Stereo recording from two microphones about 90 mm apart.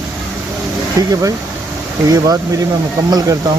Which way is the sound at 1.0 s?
40° right (ahead or behind).